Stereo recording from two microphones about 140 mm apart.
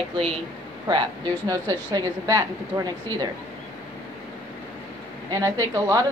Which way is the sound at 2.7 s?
35° right (ahead or behind).